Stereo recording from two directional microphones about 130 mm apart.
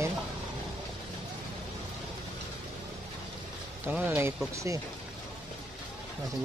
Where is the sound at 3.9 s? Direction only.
10° right (ahead or behind).